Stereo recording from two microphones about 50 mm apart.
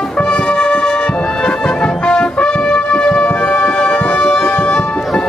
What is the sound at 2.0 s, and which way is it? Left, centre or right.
Music, centre.